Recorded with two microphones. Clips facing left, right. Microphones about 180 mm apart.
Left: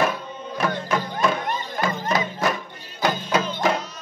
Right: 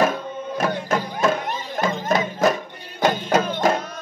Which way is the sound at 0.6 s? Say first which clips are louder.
Right 1 dB; 40° right (ahead or behind).